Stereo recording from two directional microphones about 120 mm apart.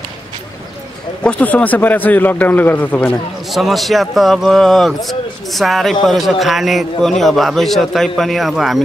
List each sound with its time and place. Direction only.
1.2 s a man's voice: 10° left (ahead or behind)
3.4 s speech: centre (ahead or behind)